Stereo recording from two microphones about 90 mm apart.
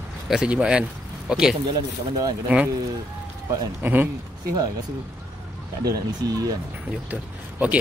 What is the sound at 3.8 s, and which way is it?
Speech, 20° right (ahead or behind).